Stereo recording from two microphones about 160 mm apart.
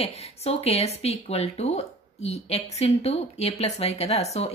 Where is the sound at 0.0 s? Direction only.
40° left (ahead or behind).